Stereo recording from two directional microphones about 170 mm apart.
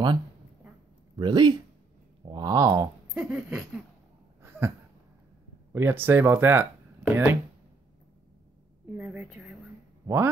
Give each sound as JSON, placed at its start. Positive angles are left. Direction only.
{"t": 1.1, "sound": "speech", "side_deg": -25}
{"t": 3.2, "sound": "a sound", "side_deg": -5}
{"t": 5.7, "sound": "speech", "side_deg": -15}
{"t": 8.9, "sound": "a woman's voice", "side_deg": -5}